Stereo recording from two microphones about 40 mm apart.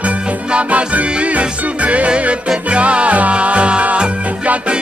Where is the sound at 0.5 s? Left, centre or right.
Right.